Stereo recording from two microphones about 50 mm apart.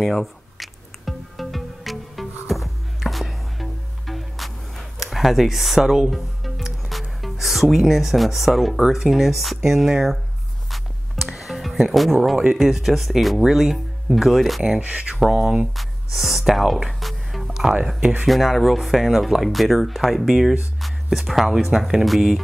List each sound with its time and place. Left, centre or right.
0.0 s music: centre
5.8 s speech: centre
6.0 s music: centre
7.7 s speech: centre
10.7 s music: centre
12.5 s speech: centre
14.8 s speech: right
15.1 s speech: centre
15.6 s a sound: centre
18.2 s speech: centre